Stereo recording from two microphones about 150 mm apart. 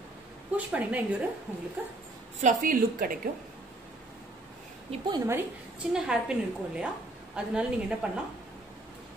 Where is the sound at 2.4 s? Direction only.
65° right (ahead or behind).